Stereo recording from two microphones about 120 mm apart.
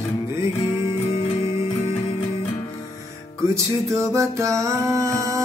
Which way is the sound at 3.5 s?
25° right (ahead or behind).